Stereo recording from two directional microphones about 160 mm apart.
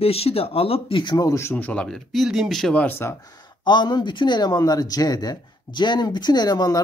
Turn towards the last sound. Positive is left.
turn(degrees=25)  # may be behind; listen again after turning